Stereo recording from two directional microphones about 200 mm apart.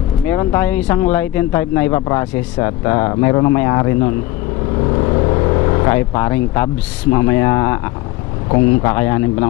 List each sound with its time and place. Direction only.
0.3 s speech: 15° left (ahead or behind)